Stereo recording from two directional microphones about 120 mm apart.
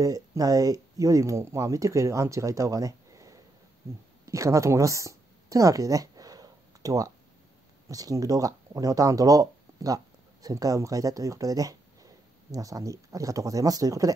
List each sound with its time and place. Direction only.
0.0 s speech: 30° right (ahead or behind)
4.3 s a sound: 25° right (ahead or behind)
7.9 s speech: 30° right (ahead or behind)